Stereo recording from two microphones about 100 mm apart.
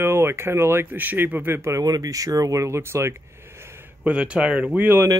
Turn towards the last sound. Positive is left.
turn(degrees=-20)  # may be behind; listen again after turning